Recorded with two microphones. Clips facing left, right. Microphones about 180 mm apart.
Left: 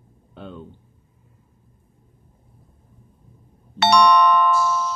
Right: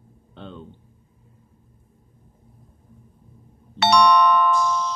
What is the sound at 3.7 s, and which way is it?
Doorbell, 50° left (ahead or behind).